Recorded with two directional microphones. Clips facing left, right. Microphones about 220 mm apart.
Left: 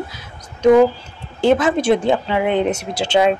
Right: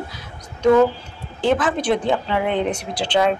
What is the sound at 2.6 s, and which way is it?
Speech, 25° left (ahead or behind).